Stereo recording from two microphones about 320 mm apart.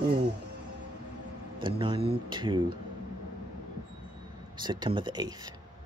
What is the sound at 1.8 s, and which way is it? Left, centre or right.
Speech, centre.